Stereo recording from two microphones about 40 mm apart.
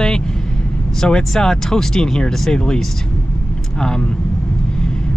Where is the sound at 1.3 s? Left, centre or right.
Centre.